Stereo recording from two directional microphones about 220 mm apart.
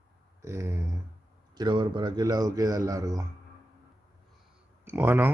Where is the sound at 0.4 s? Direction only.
10° right (ahead or behind).